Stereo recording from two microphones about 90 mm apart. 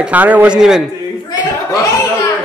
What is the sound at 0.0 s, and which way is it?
Speech, 15° right (ahead or behind).